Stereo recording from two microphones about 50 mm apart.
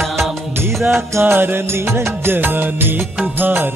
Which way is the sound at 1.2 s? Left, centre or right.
Right.